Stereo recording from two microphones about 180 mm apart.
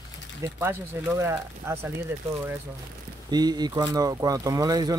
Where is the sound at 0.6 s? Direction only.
15° right (ahead or behind).